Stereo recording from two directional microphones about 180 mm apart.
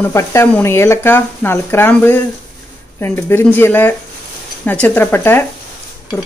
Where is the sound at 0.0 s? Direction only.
15° left (ahead or behind).